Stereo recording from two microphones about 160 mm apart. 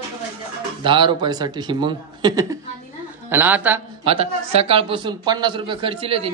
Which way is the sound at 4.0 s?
35° right (ahead or behind).